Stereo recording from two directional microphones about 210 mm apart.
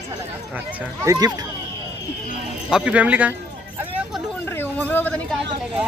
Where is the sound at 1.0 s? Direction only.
15° right (ahead or behind).